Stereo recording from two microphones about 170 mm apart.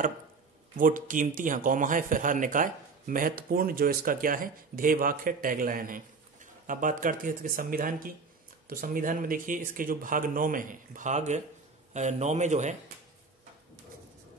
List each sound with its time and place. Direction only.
0.7 s speech: 50° right (ahead or behind)